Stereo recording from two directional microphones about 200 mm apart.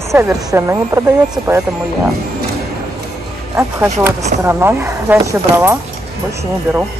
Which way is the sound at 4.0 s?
15° right (ahead or behind).